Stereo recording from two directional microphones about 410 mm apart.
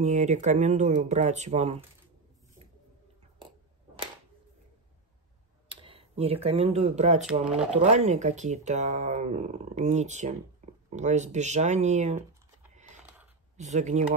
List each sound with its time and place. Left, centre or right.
0.0 s speech: centre
5.7 s speech: centre
13.6 s speech: centre